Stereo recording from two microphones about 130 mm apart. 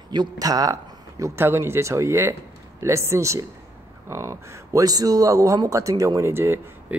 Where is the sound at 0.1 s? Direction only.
30° right (ahead or behind).